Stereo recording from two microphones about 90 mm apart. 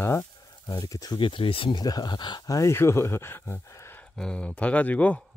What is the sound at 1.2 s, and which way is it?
Speech, 75° left (ahead or behind).